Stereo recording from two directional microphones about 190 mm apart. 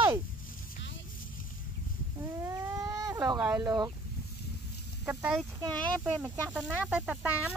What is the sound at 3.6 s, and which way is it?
Speech, 20° right (ahead or behind).